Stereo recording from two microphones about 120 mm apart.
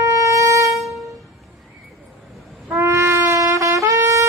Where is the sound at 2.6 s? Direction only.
20° right (ahead or behind).